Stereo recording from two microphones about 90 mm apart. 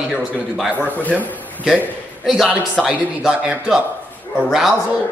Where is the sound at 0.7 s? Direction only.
20° right (ahead or behind).